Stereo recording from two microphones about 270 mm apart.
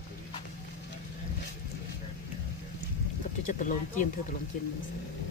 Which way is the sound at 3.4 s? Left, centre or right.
Left.